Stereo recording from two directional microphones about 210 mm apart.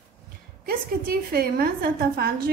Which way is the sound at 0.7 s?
45° right (ahead or behind).